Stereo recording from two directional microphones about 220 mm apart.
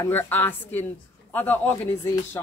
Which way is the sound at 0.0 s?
10° left (ahead or behind).